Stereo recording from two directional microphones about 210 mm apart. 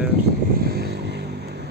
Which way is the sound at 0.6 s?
50° right (ahead or behind).